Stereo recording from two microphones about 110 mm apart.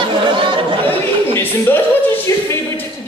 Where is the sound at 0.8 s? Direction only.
20° left (ahead or behind).